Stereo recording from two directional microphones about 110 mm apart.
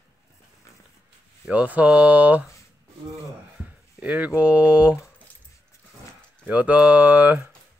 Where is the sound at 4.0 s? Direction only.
10° right (ahead or behind).